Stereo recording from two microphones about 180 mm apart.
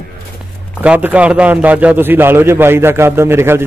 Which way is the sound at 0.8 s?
10° right (ahead or behind).